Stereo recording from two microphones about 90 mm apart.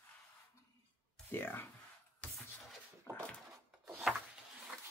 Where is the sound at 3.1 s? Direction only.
30° left (ahead or behind).